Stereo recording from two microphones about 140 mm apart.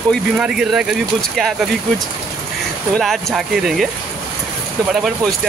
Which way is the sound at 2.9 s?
Centre (ahead or behind).